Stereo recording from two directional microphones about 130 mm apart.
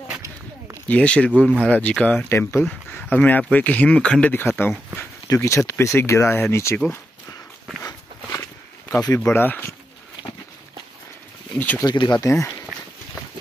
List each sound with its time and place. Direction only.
0.8 s speech: 10° left (ahead or behind)
7.8 s a sound: 25° left (ahead or behind)
9.2 s speech: 15° left (ahead or behind)
11.5 s speech: 10° left (ahead or behind)
11.8 s speech: 30° left (ahead or behind)